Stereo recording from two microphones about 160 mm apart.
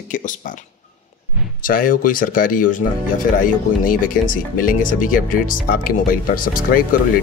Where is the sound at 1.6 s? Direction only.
60° left (ahead or behind).